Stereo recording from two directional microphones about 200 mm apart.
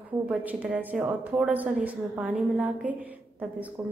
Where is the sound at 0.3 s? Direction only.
5° right (ahead or behind).